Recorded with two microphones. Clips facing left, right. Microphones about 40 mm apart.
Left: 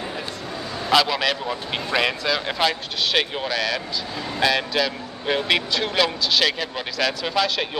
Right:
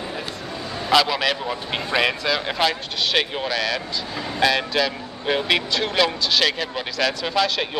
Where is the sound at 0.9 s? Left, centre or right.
Centre.